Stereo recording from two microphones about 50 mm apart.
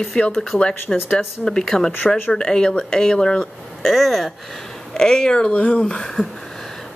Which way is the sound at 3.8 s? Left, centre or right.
Centre.